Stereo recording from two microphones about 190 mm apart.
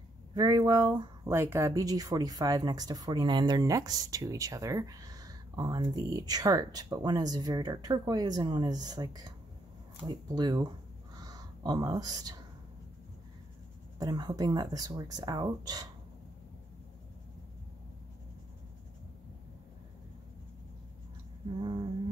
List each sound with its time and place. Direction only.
0.3 s speech: 20° right (ahead or behind)
11.1 s a sound: 20° right (ahead or behind)
13.9 s speech: 20° right (ahead or behind)
21.5 s speech: 25° right (ahead or behind)